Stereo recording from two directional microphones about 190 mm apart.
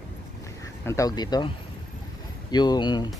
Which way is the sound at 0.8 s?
15° left (ahead or behind).